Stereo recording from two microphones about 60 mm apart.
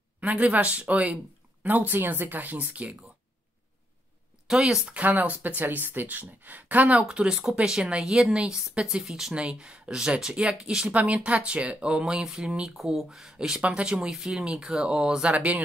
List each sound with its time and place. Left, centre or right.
0.2 s speech: right
4.6 s speech: centre
4.9 s speech: right
7.1 s speech: centre
10.9 s speech: right